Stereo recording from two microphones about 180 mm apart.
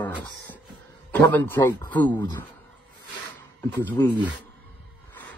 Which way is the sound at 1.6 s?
25° left (ahead or behind).